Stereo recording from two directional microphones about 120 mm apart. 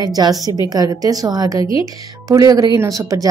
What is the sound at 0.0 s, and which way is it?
A woman's voice, 30° right (ahead or behind).